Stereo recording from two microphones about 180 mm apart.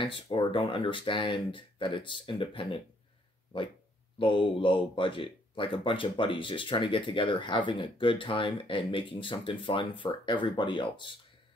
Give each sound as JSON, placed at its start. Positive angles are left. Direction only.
{"t": 0.3, "sound": "speech", "side_deg": 30}
{"t": 4.2, "sound": "speech", "side_deg": 30}